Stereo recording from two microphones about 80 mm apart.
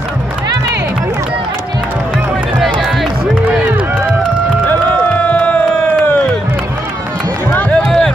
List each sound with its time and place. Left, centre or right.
2.6 s music: centre
5.2 s crowd: centre
7.7 s music: centre